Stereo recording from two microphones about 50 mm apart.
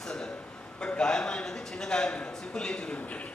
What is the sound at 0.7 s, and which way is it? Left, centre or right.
A man's voice, centre.